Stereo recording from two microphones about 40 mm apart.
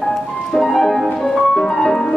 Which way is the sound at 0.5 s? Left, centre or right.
Centre.